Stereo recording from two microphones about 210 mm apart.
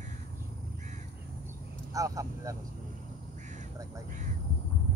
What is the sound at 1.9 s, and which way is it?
Speech, 15° right (ahead or behind).